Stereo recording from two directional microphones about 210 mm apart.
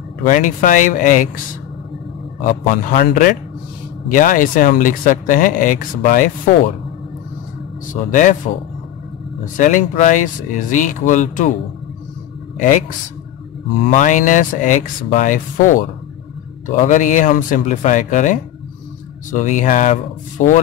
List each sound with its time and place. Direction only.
0.3 s speech: 40° left (ahead or behind)
3.0 s speech: 45° left (ahead or behind)
7.9 s speech: 35° left (ahead or behind)
9.4 s speech: 40° left (ahead or behind)
12.5 s speech: 40° left (ahead or behind)
13.8 s speech: 35° left (ahead or behind)